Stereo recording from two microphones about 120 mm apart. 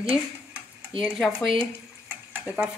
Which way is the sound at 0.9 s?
50° right (ahead or behind).